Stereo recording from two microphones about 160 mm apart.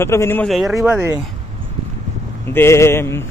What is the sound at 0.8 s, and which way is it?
Speech, 15° right (ahead or behind).